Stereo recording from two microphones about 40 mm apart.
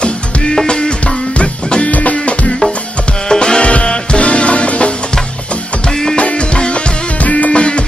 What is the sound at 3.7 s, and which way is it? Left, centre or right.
Music, left.